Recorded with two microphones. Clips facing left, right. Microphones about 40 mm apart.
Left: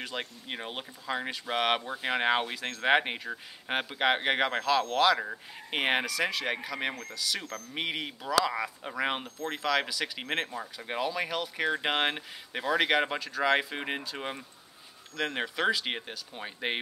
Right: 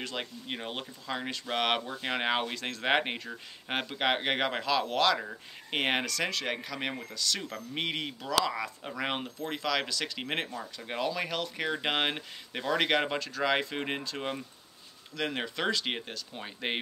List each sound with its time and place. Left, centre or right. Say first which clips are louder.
0.0 s speech: even; centre
9.6 s speech: left 3 dB; centre